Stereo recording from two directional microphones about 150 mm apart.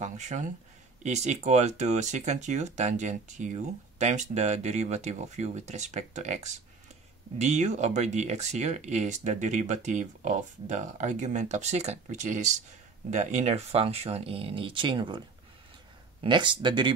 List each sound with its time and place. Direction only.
0.0 s speech: 50° right (ahead or behind); by 16.9 s 30° right (ahead or behind)